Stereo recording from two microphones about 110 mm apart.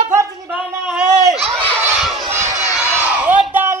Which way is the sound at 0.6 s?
10° right (ahead or behind).